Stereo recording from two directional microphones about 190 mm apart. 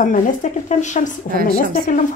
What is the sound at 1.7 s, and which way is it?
Speech, 45° left (ahead or behind).